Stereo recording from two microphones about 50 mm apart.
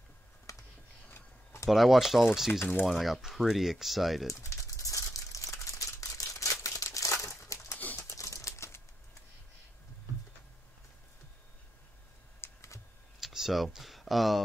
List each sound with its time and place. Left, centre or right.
0.5 s computer keyboard: left
1.7 s speech: centre
4.4 s crumpling: left
7.5 s a sound: left
8.1 s crumpling: left
12.4 s computer keyboard: left
13.2 s speech: centre